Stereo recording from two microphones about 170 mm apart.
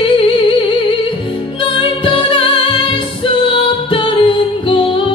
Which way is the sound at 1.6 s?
30° left (ahead or behind).